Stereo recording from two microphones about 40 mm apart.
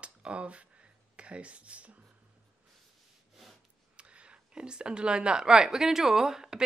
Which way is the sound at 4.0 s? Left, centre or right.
Right.